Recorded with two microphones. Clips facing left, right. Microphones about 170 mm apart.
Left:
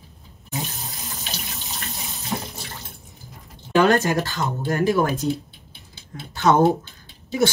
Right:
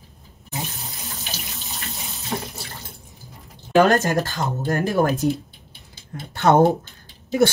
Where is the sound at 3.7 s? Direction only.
45° right (ahead or behind).